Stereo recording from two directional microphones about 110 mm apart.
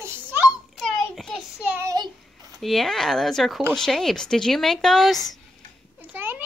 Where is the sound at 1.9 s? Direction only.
35° right (ahead or behind).